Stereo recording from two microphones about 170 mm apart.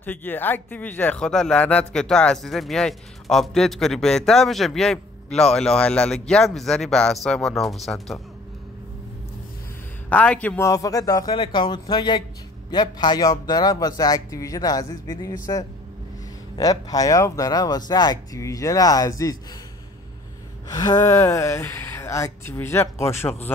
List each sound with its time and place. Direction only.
0.0 s speech: 10° left (ahead or behind)
10.0 s speech: 10° left (ahead or behind)
10.7 s speech: 20° left (ahead or behind)
20.6 s speech: 25° left (ahead or behind)